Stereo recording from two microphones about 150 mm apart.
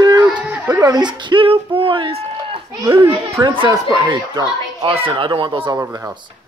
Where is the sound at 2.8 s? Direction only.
20° right (ahead or behind).